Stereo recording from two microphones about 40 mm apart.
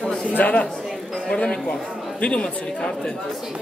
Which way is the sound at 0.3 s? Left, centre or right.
Left.